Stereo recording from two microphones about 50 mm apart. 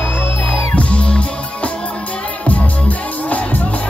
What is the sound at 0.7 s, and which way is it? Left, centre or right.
Music, left.